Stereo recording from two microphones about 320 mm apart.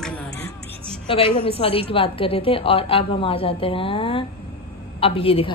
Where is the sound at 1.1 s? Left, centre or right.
Centre.